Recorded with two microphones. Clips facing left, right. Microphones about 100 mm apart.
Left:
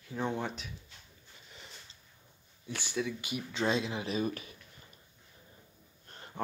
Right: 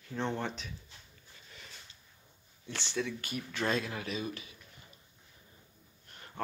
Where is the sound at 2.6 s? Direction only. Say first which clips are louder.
Left 1 dB; 10° left (ahead or behind).